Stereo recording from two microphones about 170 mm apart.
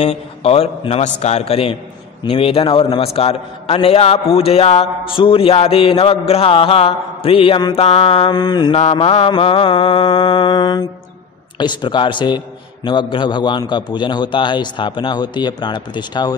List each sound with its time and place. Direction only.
0.0 s a man's voice: 35° left (ahead or behind)
8.7 s a man's voice: 35° left (ahead or behind)